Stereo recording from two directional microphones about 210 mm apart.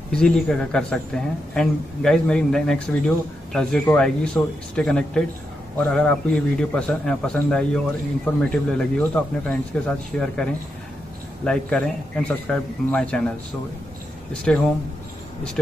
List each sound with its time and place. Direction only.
0.1 s a man's voice: 5° left (ahead or behind)
14.5 s a man's voice: 5° left (ahead or behind)